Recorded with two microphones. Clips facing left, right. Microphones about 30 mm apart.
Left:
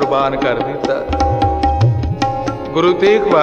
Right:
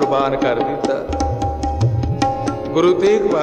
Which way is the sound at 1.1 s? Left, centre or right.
Left.